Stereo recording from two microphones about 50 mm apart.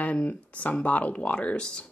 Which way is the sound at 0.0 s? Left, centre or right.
Left.